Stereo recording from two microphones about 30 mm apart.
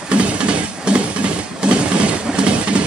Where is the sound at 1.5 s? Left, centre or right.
Right.